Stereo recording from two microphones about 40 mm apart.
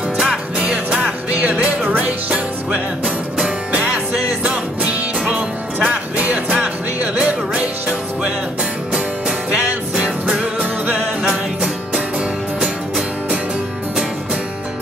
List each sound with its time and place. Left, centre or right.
0.2 s music: centre
1.4 s music: right
4.8 s music: right
7.2 s music: right
9.5 s music: right
11.2 s music: centre